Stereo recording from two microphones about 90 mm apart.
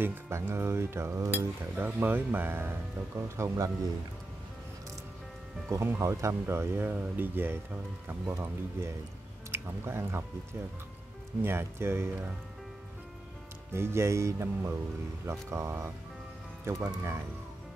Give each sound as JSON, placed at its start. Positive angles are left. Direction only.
{"t": 0.0, "sound": "cutlery", "side_deg": -25}
{"t": 3.3, "sound": "speech", "side_deg": -35}
{"t": 5.7, "sound": "cutlery", "side_deg": -30}
{"t": 9.5, "sound": "speech", "side_deg": -25}
{"t": 11.4, "sound": "cutlery", "side_deg": -25}
{"t": 13.7, "sound": "speech", "side_deg": -30}
{"t": 16.8, "sound": "cutlery", "side_deg": -30}